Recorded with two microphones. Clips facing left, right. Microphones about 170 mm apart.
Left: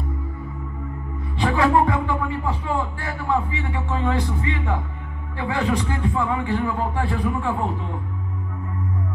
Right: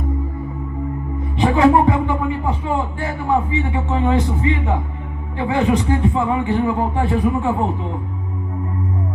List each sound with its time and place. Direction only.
1.4 s speech: 20° right (ahead or behind)